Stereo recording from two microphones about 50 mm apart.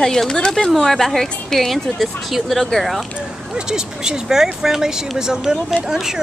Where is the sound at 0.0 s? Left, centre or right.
Centre.